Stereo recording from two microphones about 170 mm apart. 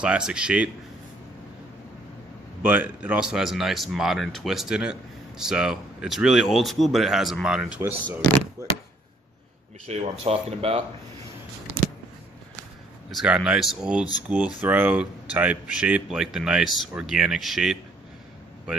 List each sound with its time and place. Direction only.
0.0 s speech: 5° right (ahead or behind)
2.6 s speech: 10° right (ahead or behind)
8.6 s speech: 20° right (ahead or behind)
9.8 s speech: 35° right (ahead or behind)
13.1 s speech: 5° right (ahead or behind)